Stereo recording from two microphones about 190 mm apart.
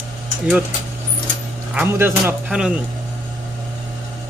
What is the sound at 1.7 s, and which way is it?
Speech, 10° right (ahead or behind).